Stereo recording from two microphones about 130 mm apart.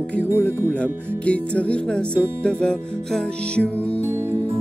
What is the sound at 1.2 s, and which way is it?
Music, 10° left (ahead or behind).